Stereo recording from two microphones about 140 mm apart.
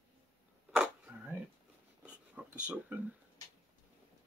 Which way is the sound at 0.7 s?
10° right (ahead or behind).